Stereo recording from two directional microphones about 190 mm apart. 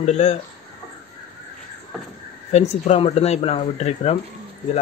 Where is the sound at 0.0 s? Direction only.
35° left (ahead or behind).